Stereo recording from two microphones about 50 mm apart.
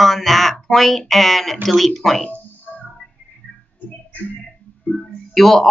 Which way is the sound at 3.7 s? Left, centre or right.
Left.